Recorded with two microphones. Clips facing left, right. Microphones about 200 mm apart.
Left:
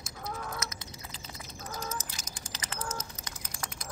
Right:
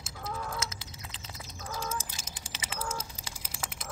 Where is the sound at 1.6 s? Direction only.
10° right (ahead or behind).